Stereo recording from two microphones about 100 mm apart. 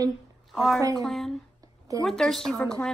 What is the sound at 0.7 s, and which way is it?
Speech, 35° right (ahead or behind).